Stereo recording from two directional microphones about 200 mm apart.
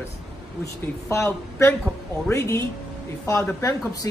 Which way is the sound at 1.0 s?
15° left (ahead or behind).